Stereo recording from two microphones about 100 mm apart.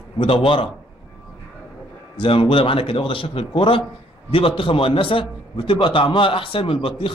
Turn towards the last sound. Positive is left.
turn(degrees=65)  # may be behind; listen again after turning